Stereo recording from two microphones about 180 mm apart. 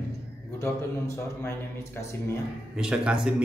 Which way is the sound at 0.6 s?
15° left (ahead or behind).